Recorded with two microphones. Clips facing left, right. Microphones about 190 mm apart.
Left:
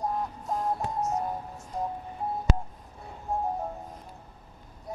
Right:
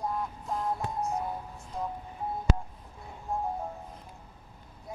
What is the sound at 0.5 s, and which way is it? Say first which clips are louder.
Music: left 2 dB; 40° left (ahead or behind).